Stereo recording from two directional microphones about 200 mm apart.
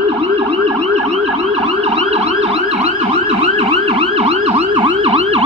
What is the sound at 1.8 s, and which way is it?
Emergency vehicle, 30° right (ahead or behind).